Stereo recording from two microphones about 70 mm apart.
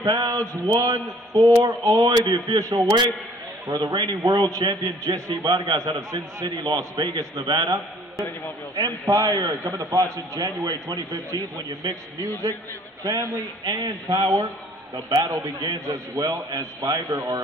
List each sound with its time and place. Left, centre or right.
0.0 s a man's voice: right
0.7 s a man's voice: right
0.9 s a man's voice: right
3.6 s a man's voice: right
5.4 s a man's voice: right
5.8 s a man's voice: right
7.0 s a man's voice: right
8.7 s a man's voice: right
9.3 s a man's voice: right
9.6 s a man's voice: right
15.0 s a man's voice: right
15.2 s a man's voice: right
17.1 s a man's voice: right